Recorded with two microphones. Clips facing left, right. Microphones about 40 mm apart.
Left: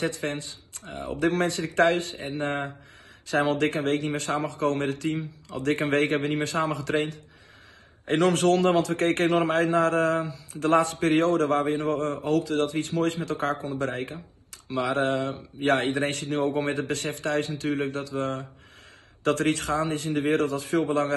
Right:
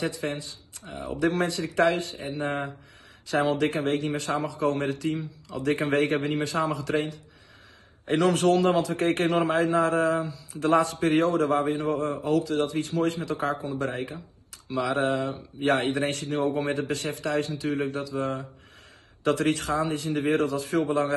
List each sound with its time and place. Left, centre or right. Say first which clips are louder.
0.0 s a man's voice: left 1 dB; left